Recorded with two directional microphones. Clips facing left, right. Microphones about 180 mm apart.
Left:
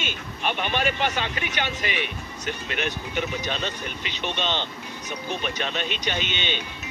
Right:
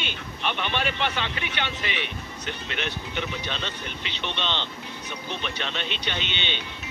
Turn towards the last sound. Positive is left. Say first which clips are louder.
# left 3 dB
turn(degrees=45)  # may be behind; listen again after turning